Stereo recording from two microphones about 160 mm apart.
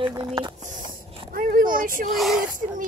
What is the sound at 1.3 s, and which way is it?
Speech, 65° right (ahead or behind).